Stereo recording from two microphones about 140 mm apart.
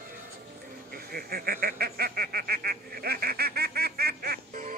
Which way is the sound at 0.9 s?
90° right.